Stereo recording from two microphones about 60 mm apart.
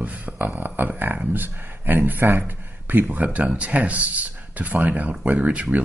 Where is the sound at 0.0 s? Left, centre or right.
Right.